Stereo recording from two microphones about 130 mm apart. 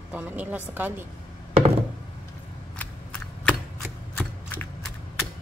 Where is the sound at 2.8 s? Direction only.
10° left (ahead or behind).